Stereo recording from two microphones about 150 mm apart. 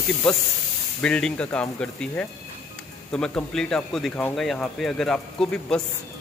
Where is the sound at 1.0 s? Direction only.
5° left (ahead or behind).